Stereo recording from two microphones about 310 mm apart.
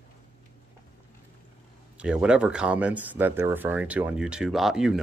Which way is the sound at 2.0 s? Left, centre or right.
Centre.